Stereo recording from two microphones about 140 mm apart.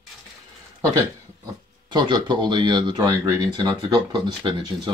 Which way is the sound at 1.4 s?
30° right (ahead or behind).